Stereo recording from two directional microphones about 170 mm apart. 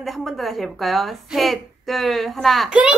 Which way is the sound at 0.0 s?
Centre (ahead or behind).